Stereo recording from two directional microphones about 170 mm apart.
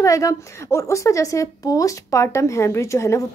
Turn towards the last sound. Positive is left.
turn(degrees=15)  # may be behind; listen again after turning